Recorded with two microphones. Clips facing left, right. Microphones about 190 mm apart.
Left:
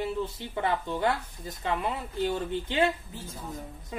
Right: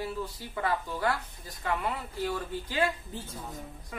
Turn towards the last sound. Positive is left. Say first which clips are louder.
# left 4 dB
turn(degrees=25)  # may be behind; listen again after turning